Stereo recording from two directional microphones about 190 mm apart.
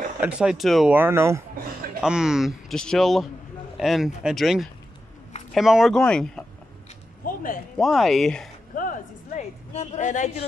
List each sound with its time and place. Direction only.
0.2 s speech: 5° right (ahead or behind)
7.2 s speech: 45° left (ahead or behind)
7.7 s speech: centre (ahead or behind)
8.7 s a sound: 45° left (ahead or behind)